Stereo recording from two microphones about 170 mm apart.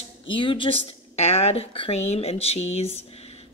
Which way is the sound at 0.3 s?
30° left (ahead or behind).